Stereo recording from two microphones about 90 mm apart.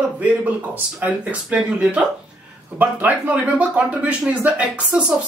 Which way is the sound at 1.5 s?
10° right (ahead or behind).